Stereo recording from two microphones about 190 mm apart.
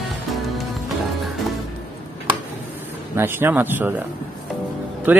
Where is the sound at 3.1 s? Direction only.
10° right (ahead or behind).